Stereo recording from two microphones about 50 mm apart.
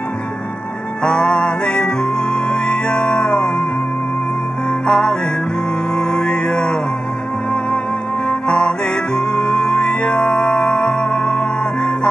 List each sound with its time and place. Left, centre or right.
1.0 s music: centre
4.6 s music: centre
8.3 s music: centre